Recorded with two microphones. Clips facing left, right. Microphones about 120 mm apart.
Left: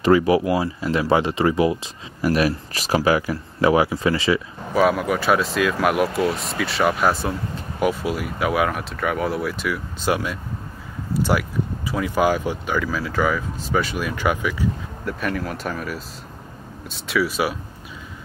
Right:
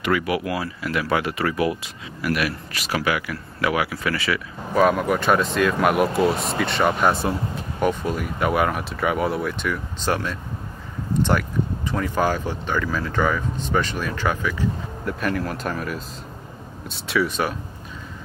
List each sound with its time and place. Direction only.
0.0 s speech: 30° left (ahead or behind)
4.7 s speech: centre (ahead or behind)
15.0 s speech: centre (ahead or behind)